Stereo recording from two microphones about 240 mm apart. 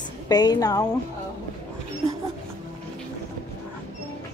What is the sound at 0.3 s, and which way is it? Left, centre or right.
Speech, centre.